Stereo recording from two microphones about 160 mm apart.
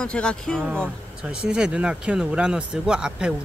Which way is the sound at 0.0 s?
5° left (ahead or behind).